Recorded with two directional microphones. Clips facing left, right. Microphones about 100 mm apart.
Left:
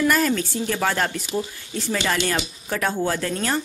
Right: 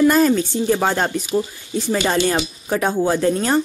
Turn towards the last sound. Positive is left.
turn(degrees=-25)  # may be behind; listen again after turning